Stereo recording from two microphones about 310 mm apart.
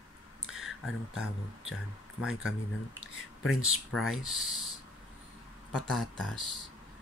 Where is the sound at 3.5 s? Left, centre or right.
Centre.